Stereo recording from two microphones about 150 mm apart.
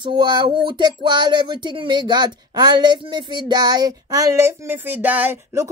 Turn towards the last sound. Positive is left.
turn(degrees=-15)  # may be behind; listen again after turning